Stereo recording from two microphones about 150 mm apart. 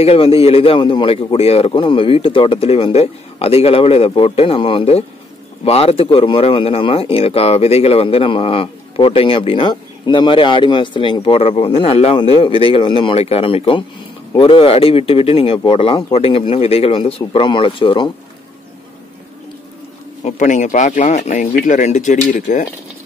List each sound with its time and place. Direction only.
0.0 s speech: 40° left (ahead or behind)
20.2 s speech: 55° left (ahead or behind)